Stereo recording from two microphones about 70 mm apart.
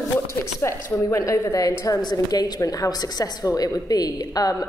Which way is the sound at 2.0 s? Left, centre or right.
Left.